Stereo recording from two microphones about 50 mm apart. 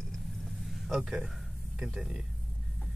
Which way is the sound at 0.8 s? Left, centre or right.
Centre.